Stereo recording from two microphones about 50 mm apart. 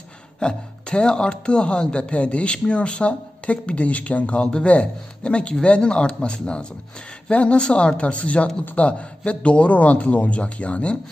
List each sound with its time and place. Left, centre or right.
0.4 s speech: centre